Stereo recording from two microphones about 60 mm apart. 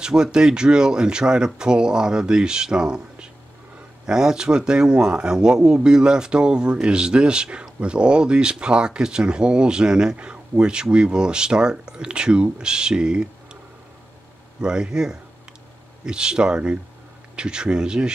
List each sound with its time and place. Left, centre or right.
0.0 s speech: centre
14.6 s speech: centre